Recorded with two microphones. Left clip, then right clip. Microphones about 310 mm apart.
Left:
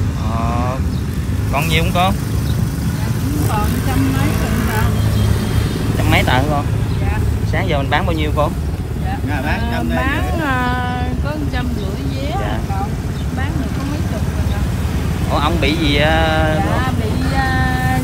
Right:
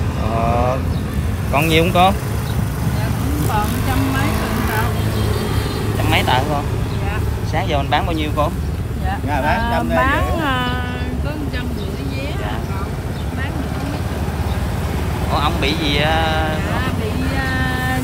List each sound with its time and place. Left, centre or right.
1.5 s speech: centre
4.3 s vehicle: right
6.0 s speech: centre
7.5 s speech: centre
9.3 s speech: right
10.0 s speech: centre
15.3 s speech: centre
17.4 s female singing: centre